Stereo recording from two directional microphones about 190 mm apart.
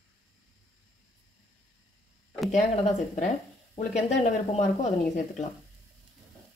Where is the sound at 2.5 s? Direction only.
40° left (ahead or behind).